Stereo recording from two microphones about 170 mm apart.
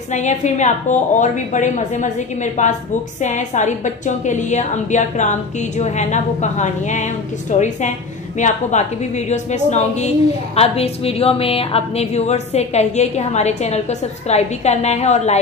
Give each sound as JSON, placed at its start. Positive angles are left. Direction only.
{"t": 0.1, "sound": "a woman's voice", "side_deg": 45}